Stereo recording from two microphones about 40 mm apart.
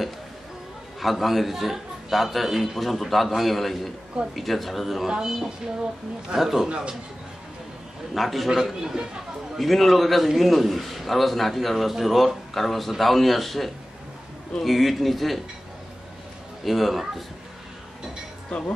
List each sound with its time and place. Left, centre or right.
0.9 s a man's voice: centre
6.6 s a man's voice: right
8.1 s a man's voice: centre
9.6 s a man's voice: centre
16.6 s a man's voice: centre